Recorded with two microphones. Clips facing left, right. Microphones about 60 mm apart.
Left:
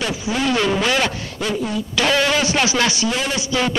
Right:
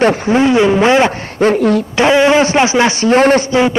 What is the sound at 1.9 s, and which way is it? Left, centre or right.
A man's voice, right.